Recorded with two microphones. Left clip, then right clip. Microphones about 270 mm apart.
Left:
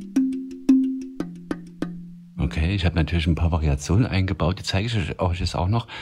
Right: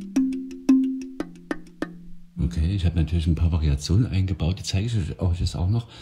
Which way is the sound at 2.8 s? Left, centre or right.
Centre.